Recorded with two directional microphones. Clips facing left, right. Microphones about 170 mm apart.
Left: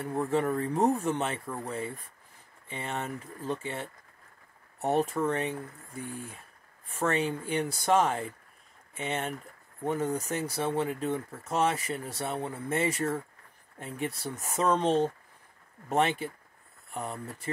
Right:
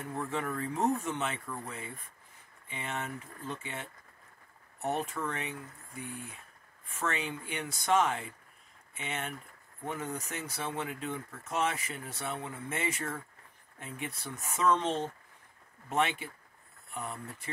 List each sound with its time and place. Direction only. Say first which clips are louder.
0.0 s speech: left 7 dB; 30° left (ahead or behind)